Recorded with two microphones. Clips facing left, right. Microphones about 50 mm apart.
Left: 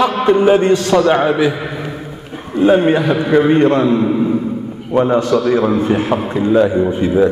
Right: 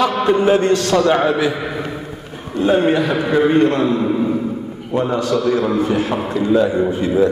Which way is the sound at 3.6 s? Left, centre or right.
Left.